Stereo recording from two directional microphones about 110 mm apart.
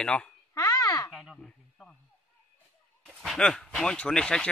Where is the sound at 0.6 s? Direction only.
35° left (ahead or behind).